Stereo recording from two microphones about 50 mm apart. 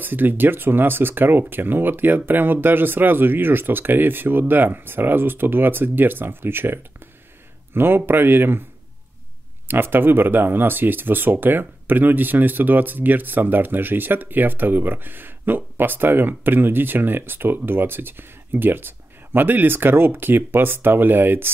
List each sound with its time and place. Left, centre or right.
0.0 s speech: right
9.7 s speech: right